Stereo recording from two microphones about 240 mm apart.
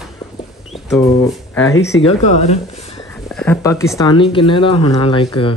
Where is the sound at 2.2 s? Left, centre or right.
Left.